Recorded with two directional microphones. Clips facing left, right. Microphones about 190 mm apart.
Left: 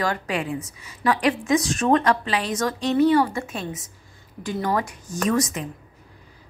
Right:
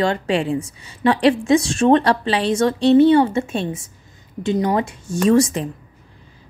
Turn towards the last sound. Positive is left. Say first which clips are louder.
# right 7 dB
turn(degrees=-30)  # may be behind; listen again after turning